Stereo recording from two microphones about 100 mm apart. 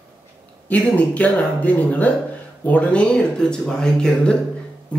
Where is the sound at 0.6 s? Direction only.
15° left (ahead or behind).